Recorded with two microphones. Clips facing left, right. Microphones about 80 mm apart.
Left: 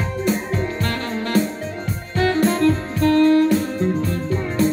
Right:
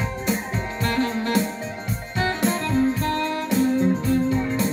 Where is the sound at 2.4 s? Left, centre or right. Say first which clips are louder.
Left 4 dB; left.